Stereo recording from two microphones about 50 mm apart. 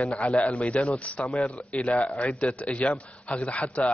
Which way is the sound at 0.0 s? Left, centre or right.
Left.